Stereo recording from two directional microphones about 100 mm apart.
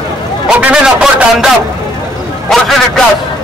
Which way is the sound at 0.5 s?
10° right (ahead or behind).